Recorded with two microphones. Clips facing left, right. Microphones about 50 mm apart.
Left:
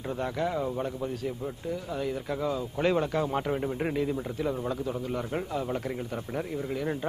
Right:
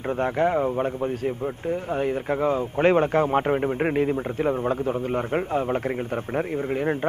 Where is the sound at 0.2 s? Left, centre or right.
Right.